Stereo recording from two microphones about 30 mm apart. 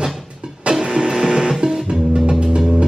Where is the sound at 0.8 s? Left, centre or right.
Right.